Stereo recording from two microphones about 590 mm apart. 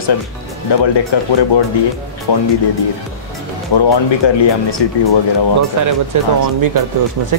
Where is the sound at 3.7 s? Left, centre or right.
Left.